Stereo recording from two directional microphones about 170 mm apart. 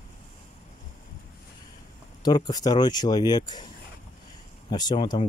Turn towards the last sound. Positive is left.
turn(degrees=25)  # may be behind; listen again after turning